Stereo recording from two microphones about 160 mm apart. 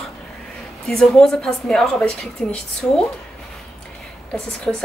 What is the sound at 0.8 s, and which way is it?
A woman's voice, 5° left (ahead or behind).